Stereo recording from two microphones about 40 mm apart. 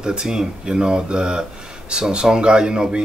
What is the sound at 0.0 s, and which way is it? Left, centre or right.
Speech, centre.